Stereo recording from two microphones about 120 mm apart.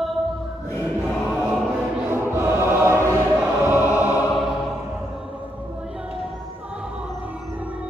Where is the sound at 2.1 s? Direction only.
20° right (ahead or behind).